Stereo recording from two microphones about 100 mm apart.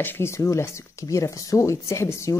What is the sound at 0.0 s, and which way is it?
Speech, 25° left (ahead or behind).